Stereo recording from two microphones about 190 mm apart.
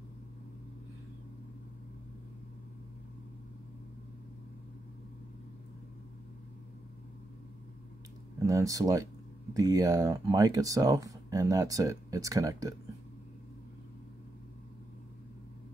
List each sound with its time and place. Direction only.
8.5 s speech: 15° right (ahead or behind)